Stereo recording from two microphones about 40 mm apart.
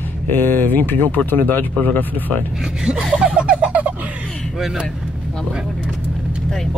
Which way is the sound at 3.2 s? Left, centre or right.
Right.